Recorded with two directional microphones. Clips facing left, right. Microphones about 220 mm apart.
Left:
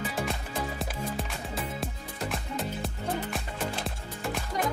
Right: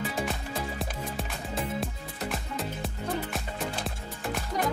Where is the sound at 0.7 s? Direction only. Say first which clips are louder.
Left 1 dB; centre (ahead or behind).